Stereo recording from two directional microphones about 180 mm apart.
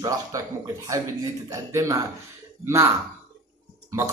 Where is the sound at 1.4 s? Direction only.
15° right (ahead or behind).